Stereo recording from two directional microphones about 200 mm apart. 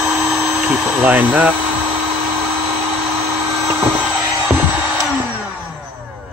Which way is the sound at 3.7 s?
10° right (ahead or behind).